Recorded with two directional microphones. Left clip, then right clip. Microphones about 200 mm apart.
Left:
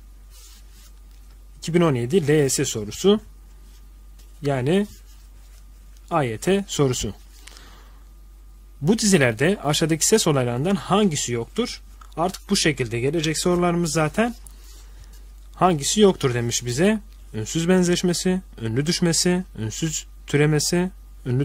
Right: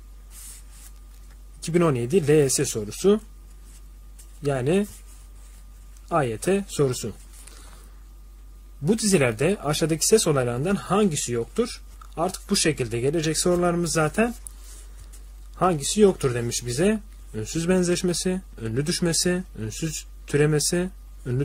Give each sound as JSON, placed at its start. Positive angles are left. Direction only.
{"t": 1.6, "sound": "speech", "side_deg": 25}
{"t": 4.4, "sound": "speech", "side_deg": 30}
{"t": 6.0, "sound": "speech", "side_deg": 35}
{"t": 8.8, "sound": "speech", "side_deg": 35}
{"t": 15.5, "sound": "speech", "side_deg": 35}